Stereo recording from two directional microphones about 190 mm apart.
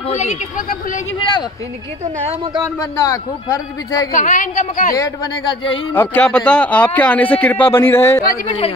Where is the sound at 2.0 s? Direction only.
35° right (ahead or behind).